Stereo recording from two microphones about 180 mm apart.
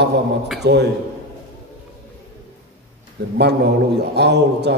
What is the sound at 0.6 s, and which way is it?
Speech, 70° right (ahead or behind).